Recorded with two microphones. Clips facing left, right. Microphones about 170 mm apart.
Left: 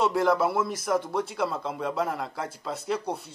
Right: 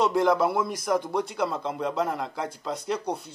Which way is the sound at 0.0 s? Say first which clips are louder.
Right 1 dB; 5° left (ahead or behind).